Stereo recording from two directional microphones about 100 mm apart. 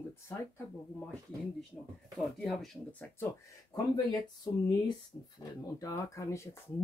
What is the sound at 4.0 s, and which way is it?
Speech, 40° left (ahead or behind).